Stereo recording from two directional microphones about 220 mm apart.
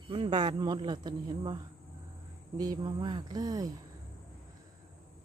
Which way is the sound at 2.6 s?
20° right (ahead or behind).